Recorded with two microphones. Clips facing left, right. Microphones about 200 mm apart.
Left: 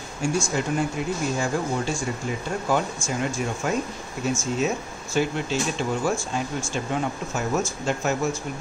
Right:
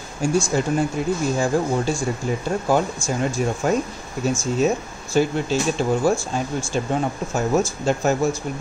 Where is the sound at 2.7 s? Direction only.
35° right (ahead or behind).